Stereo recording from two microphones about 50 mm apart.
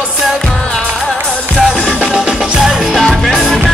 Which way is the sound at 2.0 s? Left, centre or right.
Centre.